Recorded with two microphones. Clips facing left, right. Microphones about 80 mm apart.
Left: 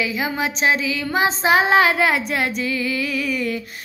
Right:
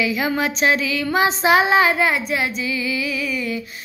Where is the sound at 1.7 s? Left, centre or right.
Left.